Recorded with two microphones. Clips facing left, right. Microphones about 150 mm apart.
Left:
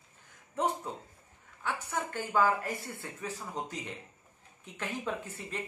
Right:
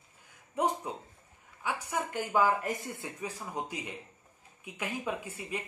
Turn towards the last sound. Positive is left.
turn(degrees=-10)  # may be behind; listen again after turning